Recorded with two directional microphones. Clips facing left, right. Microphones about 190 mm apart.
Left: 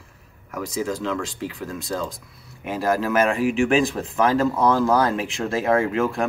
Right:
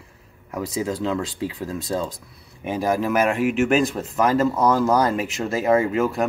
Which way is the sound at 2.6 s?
15° right (ahead or behind).